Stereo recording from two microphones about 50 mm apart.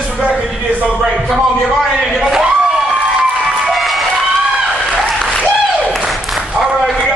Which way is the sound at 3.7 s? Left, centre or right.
Centre.